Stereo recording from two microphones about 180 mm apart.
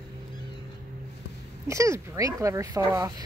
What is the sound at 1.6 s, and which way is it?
Speech, 15° right (ahead or behind).